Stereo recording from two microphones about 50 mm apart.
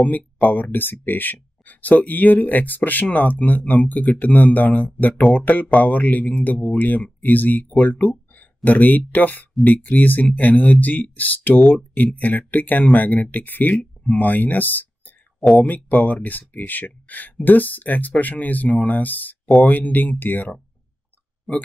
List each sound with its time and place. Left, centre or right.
0.0 s speech: left
21.5 s speech: centre